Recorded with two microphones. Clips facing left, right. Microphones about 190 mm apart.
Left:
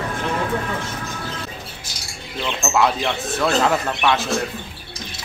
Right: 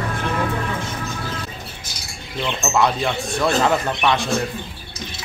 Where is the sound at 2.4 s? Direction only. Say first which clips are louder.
Even; centre (ahead or behind).